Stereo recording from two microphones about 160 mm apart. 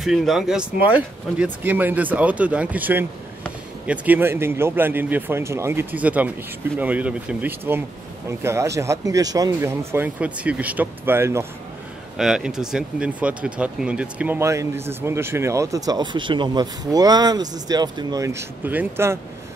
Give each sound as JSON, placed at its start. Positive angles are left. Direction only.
{"t": 0.0, "sound": "speech", "side_deg": 0}
{"t": 12.2, "sound": "speech", "side_deg": -5}